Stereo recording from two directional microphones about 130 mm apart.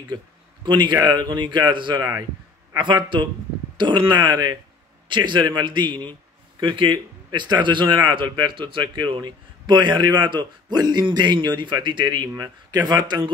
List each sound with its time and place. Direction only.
0.7 s a man's voice: 35° right (ahead or behind)